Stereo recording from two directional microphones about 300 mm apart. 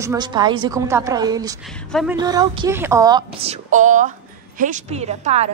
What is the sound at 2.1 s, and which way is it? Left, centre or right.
A woman's voice, centre.